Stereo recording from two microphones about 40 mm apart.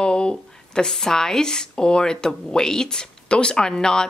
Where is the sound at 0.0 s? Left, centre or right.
Left.